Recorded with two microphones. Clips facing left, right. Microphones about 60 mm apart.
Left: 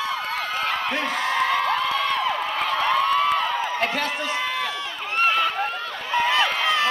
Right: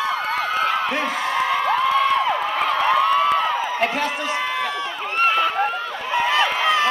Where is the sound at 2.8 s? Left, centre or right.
Centre.